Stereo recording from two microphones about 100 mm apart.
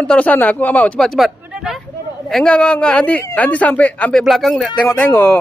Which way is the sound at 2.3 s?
10° left (ahead or behind).